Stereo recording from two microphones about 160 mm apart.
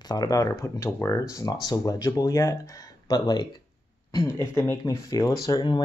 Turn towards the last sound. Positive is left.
turn(degrees=25)  # may be behind; listen again after turning